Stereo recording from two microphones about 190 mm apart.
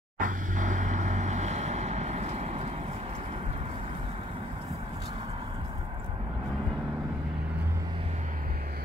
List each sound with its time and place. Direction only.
0.2 s vehicle: 40° right (ahead or behind)